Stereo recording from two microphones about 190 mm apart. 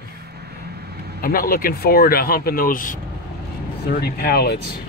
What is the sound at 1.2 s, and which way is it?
Speech, 50° left (ahead or behind).